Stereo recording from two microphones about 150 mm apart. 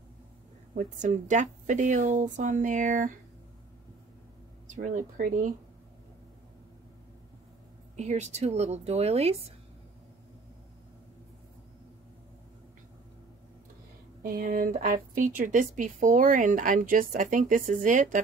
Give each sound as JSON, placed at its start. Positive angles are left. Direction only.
{"t": 0.9, "sound": "speech", "side_deg": -60}
{"t": 4.6, "sound": "speech", "side_deg": -60}
{"t": 7.9, "sound": "a woman's voice", "side_deg": -50}
{"t": 14.2, "sound": "speech", "side_deg": -70}